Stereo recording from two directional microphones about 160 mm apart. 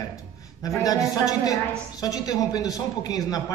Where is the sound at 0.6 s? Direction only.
20° left (ahead or behind).